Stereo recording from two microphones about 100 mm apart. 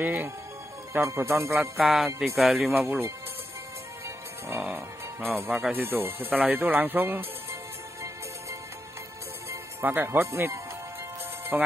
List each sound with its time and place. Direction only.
0.0 s speech: 20° right (ahead or behind)
1.5 s speech: centre (ahead or behind)
4.5 s speech: 20° right (ahead or behind)
5.5 s speech: 10° right (ahead or behind)
5.8 s speech: 20° right (ahead or behind)
9.5 s speech: 20° right (ahead or behind)
11.5 s speech: 10° right (ahead or behind)